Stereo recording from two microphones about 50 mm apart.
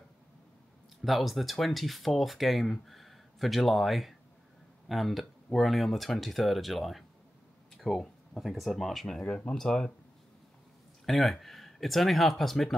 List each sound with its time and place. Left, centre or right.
1.0 s speech: centre
9.2 s speech: left
9.6 s speech: centre
11.1 s speech: centre